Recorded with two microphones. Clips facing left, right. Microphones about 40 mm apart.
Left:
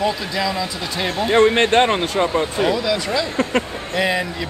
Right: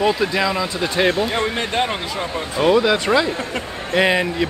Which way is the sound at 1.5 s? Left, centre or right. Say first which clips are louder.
Left 7 dB; left.